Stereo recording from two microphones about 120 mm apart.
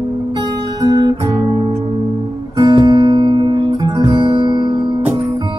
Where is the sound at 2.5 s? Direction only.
40° right (ahead or behind).